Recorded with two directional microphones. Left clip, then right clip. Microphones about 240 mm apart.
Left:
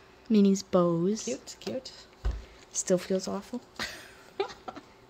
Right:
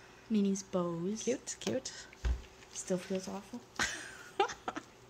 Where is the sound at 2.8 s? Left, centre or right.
Left.